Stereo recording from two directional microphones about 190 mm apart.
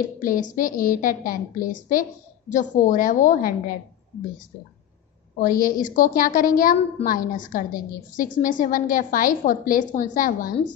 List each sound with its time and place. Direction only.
0.2 s a woman's voice: 45° left (ahead or behind)
5.4 s a woman's voice: 45° left (ahead or behind)